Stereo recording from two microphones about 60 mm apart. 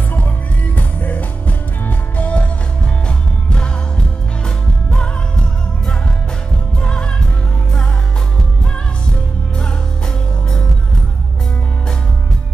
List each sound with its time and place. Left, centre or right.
0.7 s music: left
6.8 s music: centre